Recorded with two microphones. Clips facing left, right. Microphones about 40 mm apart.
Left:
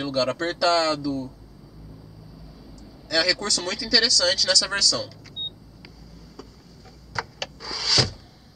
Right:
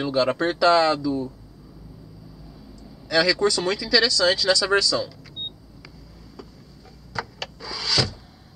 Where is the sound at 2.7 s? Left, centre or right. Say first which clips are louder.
Right 3 dB; centre.